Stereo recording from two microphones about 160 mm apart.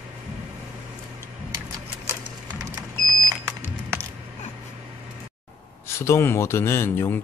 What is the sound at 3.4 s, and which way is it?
Music, 20° right (ahead or behind).